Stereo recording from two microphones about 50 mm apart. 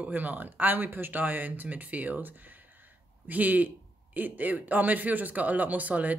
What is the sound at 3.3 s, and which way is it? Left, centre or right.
Speech, right.